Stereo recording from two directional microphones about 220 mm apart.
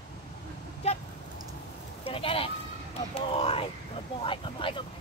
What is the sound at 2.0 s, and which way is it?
Speech, 25° left (ahead or behind).